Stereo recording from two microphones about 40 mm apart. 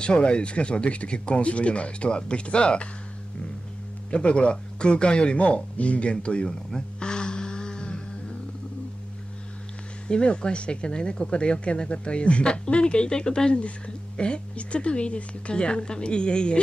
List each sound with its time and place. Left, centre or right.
0.0 s speech: left
4.1 s speech: left
7.0 s music: left
10.0 s speech: left